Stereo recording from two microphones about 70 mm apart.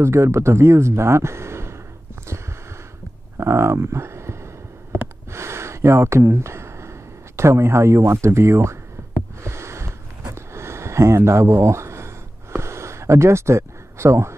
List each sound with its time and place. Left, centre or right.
0.0 s speech: right
3.3 s speech: right
5.0 s a sound: right